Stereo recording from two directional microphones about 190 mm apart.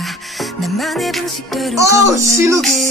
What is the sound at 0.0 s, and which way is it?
Music, centre (ahead or behind).